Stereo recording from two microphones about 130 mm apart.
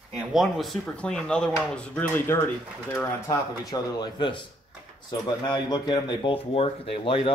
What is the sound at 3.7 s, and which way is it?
Speech, 30° left (ahead or behind).